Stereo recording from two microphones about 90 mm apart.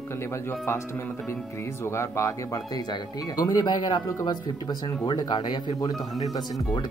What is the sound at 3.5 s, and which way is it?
Speech, 50° left (ahead or behind).